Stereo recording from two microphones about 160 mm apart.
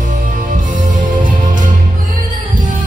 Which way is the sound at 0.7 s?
55° right (ahead or behind).